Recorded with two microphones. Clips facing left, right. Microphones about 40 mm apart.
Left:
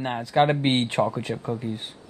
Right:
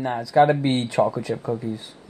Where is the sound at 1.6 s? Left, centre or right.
Left.